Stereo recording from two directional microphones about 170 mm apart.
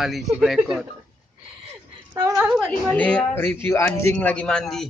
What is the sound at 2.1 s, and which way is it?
Speech, 15° right (ahead or behind).